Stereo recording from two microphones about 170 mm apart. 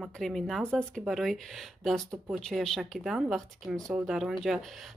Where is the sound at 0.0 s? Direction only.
Centre (ahead or behind).